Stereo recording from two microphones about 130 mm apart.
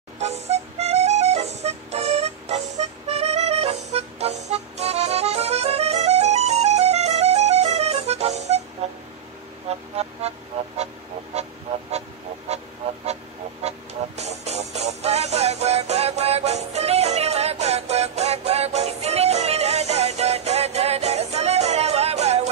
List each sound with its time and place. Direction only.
0.2 s music: 55° right (ahead or behind)
9.7 s vehicle: 55° right (ahead or behind)
13.0 s music: 55° right (ahead or behind)